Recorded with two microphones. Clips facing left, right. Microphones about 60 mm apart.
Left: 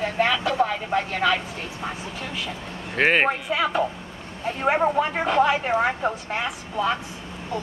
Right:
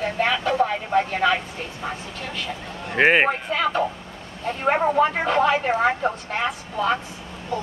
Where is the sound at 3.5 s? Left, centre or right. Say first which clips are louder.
Right 1 dB; centre.